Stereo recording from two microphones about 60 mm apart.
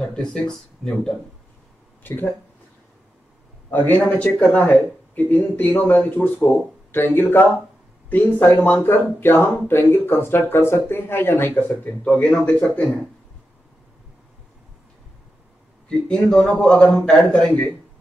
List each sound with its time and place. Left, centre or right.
0.0 s speech: centre
2.0 s speech: left
3.7 s speech: left
15.9 s a man's voice: centre